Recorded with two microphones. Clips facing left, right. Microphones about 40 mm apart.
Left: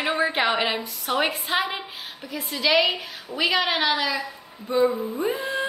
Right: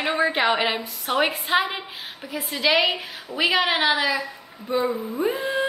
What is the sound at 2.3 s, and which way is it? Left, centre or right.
A woman's voice, centre.